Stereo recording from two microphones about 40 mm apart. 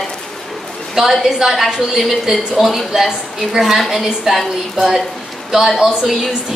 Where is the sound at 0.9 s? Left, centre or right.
Centre.